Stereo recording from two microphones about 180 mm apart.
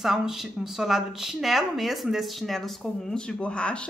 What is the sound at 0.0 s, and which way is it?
A woman's voice, centre (ahead or behind).